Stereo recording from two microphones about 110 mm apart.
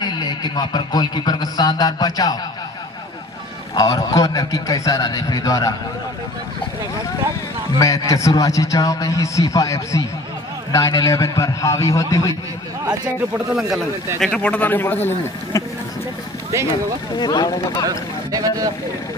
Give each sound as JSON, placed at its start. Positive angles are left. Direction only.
{"t": 0.0, "sound": "a man's voice", "side_deg": 40}
{"t": 3.7, "sound": "a man's voice", "side_deg": 35}
{"t": 7.8, "sound": "a man's voice", "side_deg": 30}
{"t": 13.5, "sound": "a man's voice", "side_deg": 0}
{"t": 14.2, "sound": "a man's voice", "side_deg": 10}
{"t": 15.5, "sound": "a man's voice", "side_deg": 30}
{"t": 17.2, "sound": "a man's voice", "side_deg": 40}
{"t": 17.8, "sound": "speech", "side_deg": -35}